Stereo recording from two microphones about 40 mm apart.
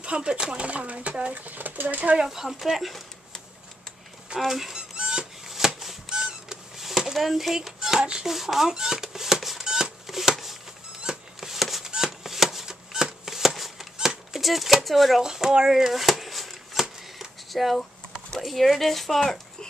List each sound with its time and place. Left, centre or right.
0.0 s speech: right
1.3 s speech: right
2.2 s speech: centre
4.5 s speech: centre
4.9 s squeak: centre
5.8 s a sound: centre
10.0 s shuffling cards: centre
11.0 s a sound: centre
11.8 s shuffling cards: centre
14.3 s speech: centre
15.2 s speech: centre
15.9 s shuffling cards: centre
18.4 s speech: centre